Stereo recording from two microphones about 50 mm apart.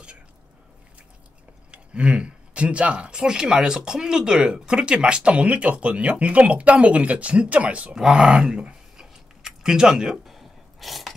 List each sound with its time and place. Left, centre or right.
1.7 s speech: right
7.9 s a sound: centre
10.2 s sneeze: centre